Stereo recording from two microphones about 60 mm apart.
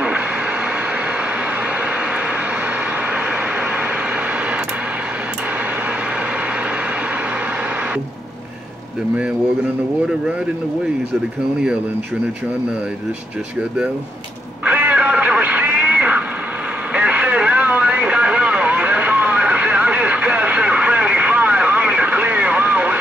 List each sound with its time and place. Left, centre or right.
3.1 s vehicle: centre
14.6 s radio: right
16.9 s vehicle: right